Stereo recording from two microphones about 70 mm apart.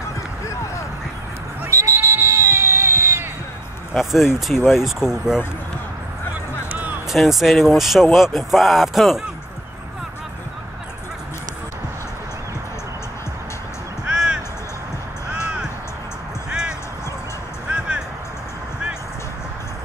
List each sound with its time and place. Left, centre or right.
1.7 s a sound: right
3.9 s speech: centre
6.7 s music: right
7.1 s speech: centre
14.0 s music: centre
17.6 s music: centre